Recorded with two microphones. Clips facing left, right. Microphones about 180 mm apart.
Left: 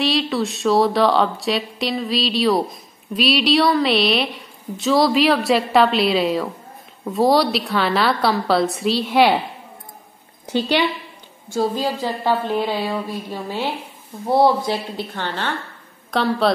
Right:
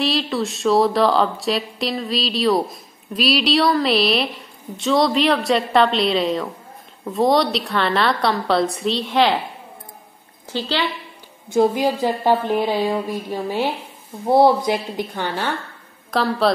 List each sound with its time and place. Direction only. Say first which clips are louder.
0.0 s speech: left 1 dB; centre (ahead or behind)
10.4 s a woman's voice: left 4 dB; 20° left (ahead or behind)
11.4 s speech: right 4 dB; 20° right (ahead or behind)
16.1 s speech: even; centre (ahead or behind)